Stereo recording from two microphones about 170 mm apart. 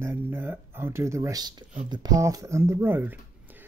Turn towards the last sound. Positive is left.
turn(degrees=-10)  # may be behind; listen again after turning